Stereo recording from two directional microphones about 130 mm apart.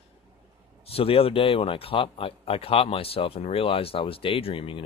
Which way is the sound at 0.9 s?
45° left (ahead or behind).